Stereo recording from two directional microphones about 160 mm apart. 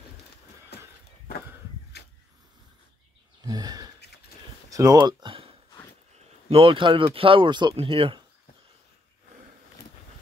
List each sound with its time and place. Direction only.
3.4 s sigh: 25° right (ahead or behind)
4.6 s speech: 20° right (ahead or behind)